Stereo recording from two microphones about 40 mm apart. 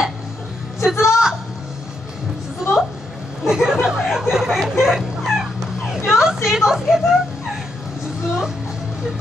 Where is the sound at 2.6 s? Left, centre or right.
Centre.